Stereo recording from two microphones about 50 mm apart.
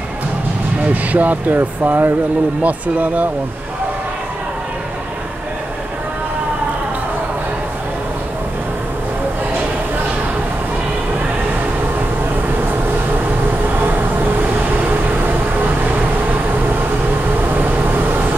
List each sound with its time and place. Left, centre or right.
1.1 s speech: right
13.7 s vehicle: right